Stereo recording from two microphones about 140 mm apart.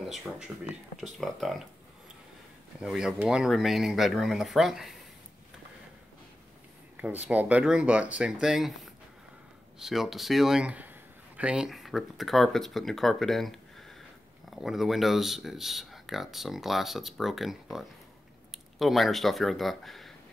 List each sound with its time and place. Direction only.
0.0 s speech: centre (ahead or behind)
2.8 s speech: 5° right (ahead or behind)
7.2 s speech: 10° right (ahead or behind)